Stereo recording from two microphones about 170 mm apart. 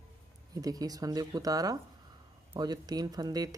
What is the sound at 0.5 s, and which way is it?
Speech, 20° right (ahead or behind).